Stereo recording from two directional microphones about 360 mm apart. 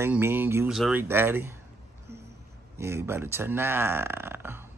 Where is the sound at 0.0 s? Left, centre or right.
Centre.